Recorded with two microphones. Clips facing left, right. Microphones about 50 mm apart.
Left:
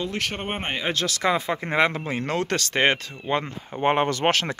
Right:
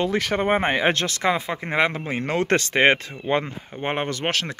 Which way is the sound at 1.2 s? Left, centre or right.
Centre.